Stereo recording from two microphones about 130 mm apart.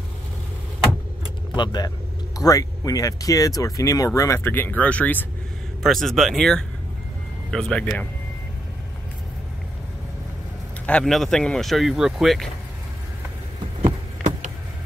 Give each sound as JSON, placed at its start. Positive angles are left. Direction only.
{"t": 1.6, "sound": "speech", "side_deg": 30}
{"t": 10.9, "sound": "speech", "side_deg": 5}